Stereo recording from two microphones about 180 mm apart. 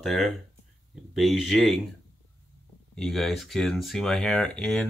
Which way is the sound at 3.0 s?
Centre (ahead or behind).